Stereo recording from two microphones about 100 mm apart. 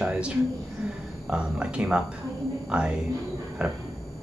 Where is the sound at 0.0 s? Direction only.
10° right (ahead or behind).